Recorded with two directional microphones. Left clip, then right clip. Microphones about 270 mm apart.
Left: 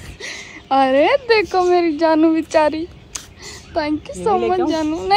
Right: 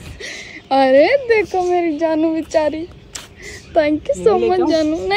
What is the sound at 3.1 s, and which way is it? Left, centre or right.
A woman's voice, centre.